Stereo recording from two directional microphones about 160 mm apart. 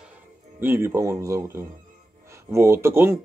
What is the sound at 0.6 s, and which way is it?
Speech, 15° right (ahead or behind).